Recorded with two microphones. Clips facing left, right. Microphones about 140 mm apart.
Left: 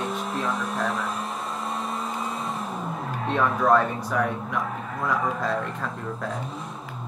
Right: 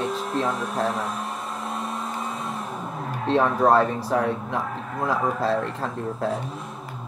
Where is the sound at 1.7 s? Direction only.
Centre (ahead or behind).